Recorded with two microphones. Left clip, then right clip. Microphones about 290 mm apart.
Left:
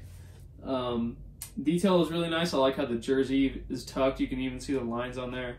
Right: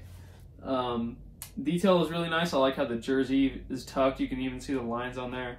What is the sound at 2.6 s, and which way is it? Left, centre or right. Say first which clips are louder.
Speech: even; centre.